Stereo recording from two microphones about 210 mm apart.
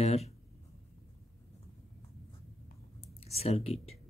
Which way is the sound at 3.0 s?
30° left (ahead or behind).